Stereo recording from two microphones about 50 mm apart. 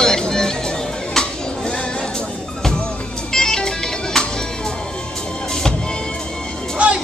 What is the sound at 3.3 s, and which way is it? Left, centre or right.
Music, centre.